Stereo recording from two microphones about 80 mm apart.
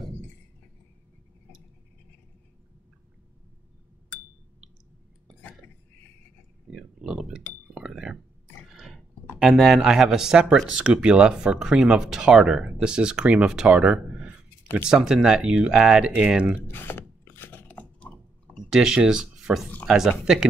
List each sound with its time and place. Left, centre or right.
1.5 s a sound: left
6.7 s pig: centre
7.7 s glass: centre
8.6 s a sound: centre
9.4 s speech: centre
16.7 s filing: left
18.6 s speech: centre